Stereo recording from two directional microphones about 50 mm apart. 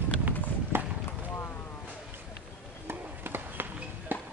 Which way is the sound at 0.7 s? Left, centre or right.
Right.